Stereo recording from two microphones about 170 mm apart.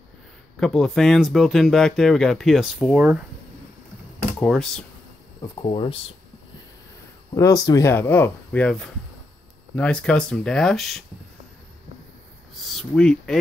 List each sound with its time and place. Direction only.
0.6 s speech: centre (ahead or behind)
4.4 s speech: 5° left (ahead or behind)
5.6 s speech: 30° left (ahead or behind)
7.3 s speech: 20° left (ahead or behind); by 11.0 s centre (ahead or behind)
12.5 s speech: centre (ahead or behind)